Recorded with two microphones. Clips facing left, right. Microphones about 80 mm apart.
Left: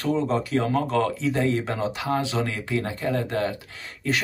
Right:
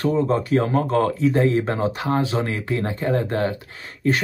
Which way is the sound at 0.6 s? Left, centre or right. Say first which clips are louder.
Right 3 dB; right.